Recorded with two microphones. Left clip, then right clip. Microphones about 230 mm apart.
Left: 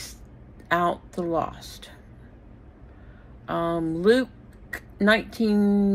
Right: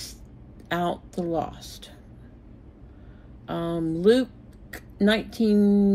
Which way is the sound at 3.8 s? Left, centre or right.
Centre.